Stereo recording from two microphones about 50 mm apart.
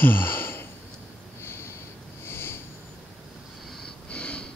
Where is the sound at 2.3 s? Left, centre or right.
Left.